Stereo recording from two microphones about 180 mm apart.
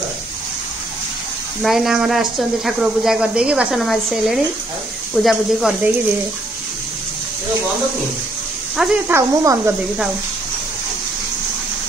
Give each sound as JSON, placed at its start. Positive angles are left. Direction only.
{"t": 1.6, "sound": "speech", "side_deg": 0}
{"t": 8.7, "sound": "speech", "side_deg": 0}
{"t": 9.1, "sound": "speech", "side_deg": -15}